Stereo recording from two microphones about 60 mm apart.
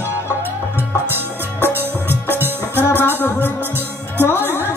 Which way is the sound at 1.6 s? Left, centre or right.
Right.